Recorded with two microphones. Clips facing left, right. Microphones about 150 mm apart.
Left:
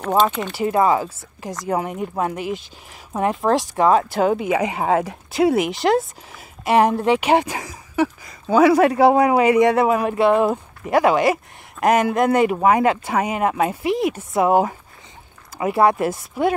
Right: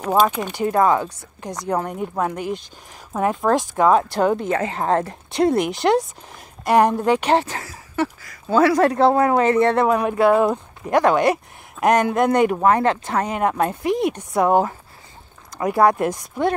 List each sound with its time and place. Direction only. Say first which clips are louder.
0.0 s speech: even; 10° right (ahead or behind)
0.5 s a man's voice: even; 5° left (ahead or behind)